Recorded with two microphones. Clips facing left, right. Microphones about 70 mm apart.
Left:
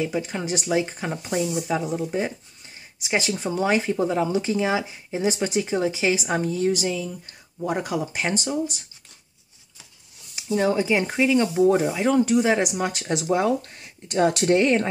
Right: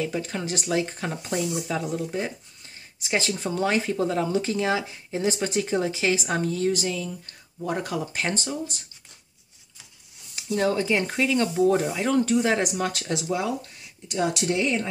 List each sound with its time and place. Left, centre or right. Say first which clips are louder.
0.0 s speech: left 2 dB; centre
10.3 s speech: left 2 dB; centre
13.3 s speech: left 8 dB; left